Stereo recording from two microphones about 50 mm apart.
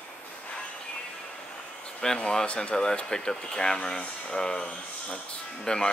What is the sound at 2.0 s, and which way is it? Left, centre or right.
Speech, centre.